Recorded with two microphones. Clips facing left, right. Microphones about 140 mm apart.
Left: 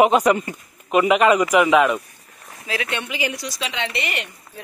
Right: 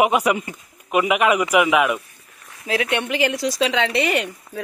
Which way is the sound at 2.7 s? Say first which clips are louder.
Right 5 dB; 65° right (ahead or behind).